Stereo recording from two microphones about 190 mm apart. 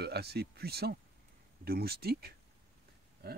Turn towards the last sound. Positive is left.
turn(degrees=-55)  # may be behind; listen again after turning